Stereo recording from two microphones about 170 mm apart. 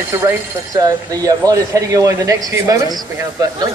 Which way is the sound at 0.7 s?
20° right (ahead or behind).